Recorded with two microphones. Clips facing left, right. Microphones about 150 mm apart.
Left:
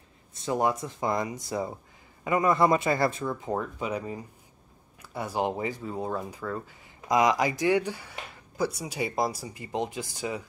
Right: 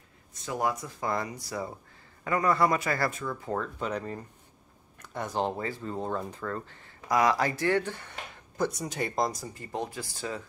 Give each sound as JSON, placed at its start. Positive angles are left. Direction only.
{"t": 0.3, "sound": "speech", "side_deg": 25}